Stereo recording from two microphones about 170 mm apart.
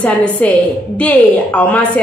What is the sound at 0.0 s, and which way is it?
A woman's voice, 5° left (ahead or behind).